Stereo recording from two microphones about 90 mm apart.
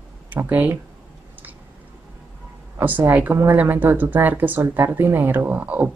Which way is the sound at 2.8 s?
20° right (ahead or behind).